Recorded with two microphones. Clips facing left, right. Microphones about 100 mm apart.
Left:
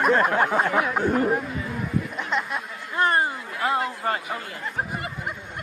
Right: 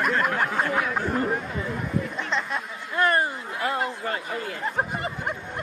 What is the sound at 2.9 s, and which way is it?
Speech, 20° left (ahead or behind).